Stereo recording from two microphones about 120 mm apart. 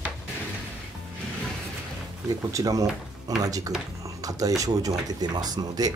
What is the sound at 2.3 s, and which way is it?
Speech, 30° right (ahead or behind).